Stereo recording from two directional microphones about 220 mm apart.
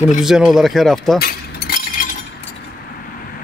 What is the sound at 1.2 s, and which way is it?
Keys jangling, 45° left (ahead or behind).